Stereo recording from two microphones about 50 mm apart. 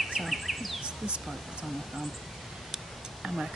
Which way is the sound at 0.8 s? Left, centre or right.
Right.